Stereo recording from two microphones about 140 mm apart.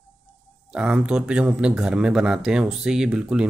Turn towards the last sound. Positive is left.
turn(degrees=-5)  # may be behind; listen again after turning